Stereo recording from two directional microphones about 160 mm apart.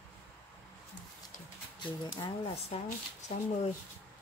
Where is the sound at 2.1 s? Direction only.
35° left (ahead or behind).